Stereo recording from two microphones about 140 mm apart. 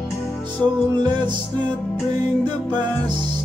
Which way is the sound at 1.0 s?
30° right (ahead or behind).